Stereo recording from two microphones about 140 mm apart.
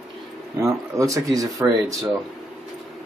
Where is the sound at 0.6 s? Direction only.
20° right (ahead or behind).